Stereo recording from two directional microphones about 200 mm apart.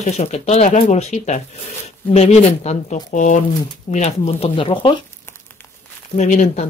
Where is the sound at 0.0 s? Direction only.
35° left (ahead or behind).